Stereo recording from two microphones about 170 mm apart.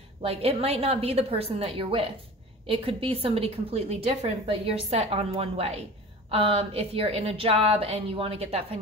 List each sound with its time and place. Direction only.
0.2 s a woman's voice: 35° right (ahead or behind)